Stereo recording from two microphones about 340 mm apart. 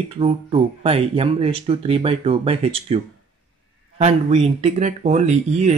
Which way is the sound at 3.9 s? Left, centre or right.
Centre.